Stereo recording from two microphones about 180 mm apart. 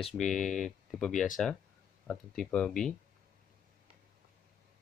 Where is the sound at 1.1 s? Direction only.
45° left (ahead or behind).